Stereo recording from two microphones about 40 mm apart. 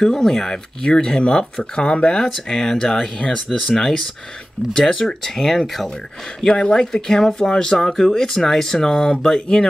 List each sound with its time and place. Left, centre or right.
0.0 s speech: centre
0.8 s speech: left
3.4 s speech: centre
4.7 s speech: centre
6.4 s speech: left